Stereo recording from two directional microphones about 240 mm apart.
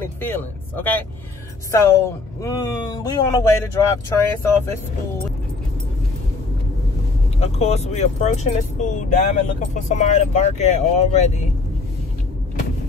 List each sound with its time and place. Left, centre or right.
0.2 s speech: centre
7.3 s speech: left